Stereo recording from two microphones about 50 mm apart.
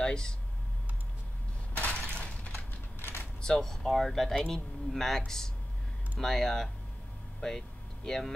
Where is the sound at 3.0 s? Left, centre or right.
Left.